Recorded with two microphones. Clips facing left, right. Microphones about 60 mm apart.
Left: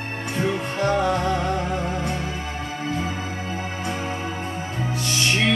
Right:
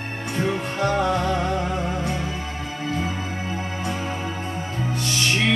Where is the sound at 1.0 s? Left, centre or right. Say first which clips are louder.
Even; left.